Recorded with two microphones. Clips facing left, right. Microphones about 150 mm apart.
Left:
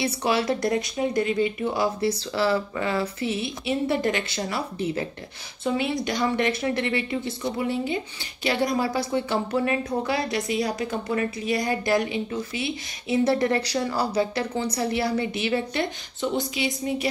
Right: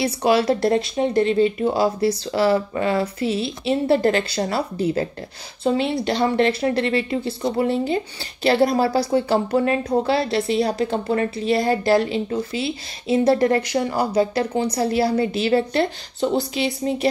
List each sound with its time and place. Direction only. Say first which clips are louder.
0.4 s speech: right 5 dB; 30° right (ahead or behind)